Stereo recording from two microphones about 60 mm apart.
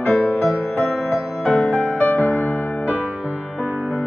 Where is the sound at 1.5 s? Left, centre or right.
Left.